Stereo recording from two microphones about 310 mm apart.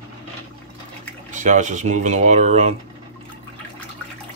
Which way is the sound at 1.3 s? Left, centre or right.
Right.